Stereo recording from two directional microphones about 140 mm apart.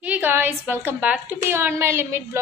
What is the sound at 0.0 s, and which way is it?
A woman's voice, 10° right (ahead or behind).